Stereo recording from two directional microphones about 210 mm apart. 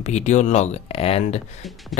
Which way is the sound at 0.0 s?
35° left (ahead or behind).